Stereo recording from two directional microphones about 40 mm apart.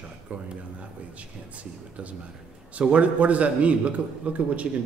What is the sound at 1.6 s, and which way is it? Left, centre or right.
A man's voice, right.